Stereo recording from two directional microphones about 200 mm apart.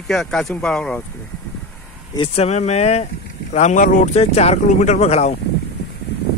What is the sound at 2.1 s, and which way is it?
Speech, 30° left (ahead or behind).